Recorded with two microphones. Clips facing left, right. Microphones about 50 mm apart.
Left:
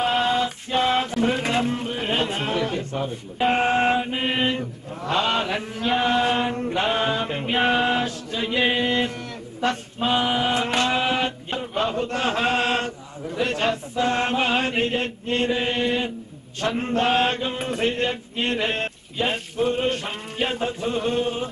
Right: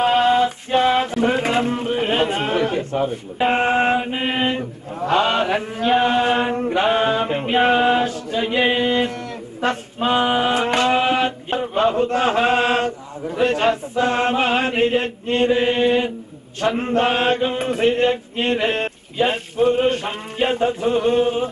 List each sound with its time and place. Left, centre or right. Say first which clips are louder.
0.0 s mantra: right 6 dB; centre
3.0 s speech: right 3 dB; centre
3.6 s speech: right 2 dB; centre
9.6 s a sound: right 3 dB; centre
11.1 s chant: right 5 dB; centre
13.5 s speech: right 5 dB; centre